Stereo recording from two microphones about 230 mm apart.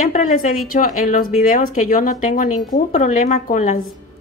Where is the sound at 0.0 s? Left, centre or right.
Left.